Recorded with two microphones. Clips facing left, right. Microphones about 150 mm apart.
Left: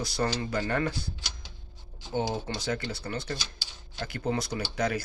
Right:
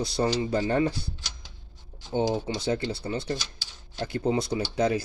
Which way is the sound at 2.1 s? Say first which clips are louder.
Right 4 dB; 15° right (ahead or behind).